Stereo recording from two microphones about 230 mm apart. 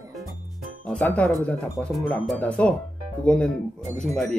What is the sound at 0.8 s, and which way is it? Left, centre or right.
Speech, centre.